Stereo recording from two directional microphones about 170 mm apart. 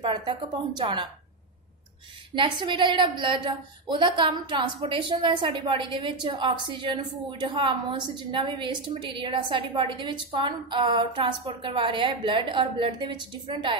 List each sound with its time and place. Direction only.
0.0 s a woman's voice: 25° right (ahead or behind)
2.3 s a woman's voice: 30° right (ahead or behind)